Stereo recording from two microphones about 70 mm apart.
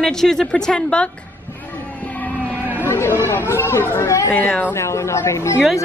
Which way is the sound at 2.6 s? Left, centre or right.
Right.